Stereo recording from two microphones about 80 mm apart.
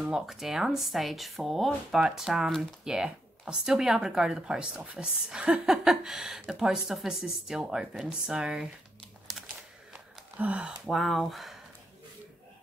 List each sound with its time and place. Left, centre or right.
0.0 s speech: centre
9.4 s a sound: centre
10.3 s speech: centre
10.9 s speech: centre